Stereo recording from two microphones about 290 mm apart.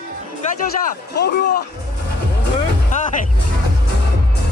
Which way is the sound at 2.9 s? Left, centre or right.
Left.